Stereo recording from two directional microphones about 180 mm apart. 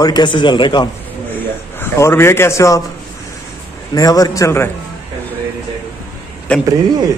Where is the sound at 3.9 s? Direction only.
20° left (ahead or behind).